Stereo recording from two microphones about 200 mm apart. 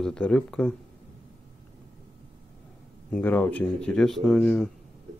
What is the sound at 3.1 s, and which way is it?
Speech, 10° left (ahead or behind).